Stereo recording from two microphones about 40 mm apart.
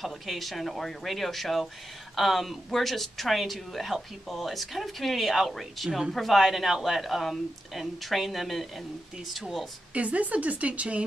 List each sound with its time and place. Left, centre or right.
0.0 s speech: centre
5.9 s speech: centre
6.1 s speech: centre
9.9 s speech: right